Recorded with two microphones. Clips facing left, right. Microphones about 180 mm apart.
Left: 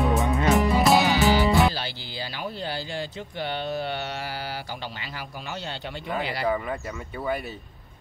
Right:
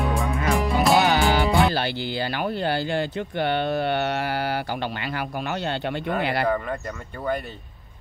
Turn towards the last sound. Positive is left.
turn(degrees=5)  # may be behind; listen again after turning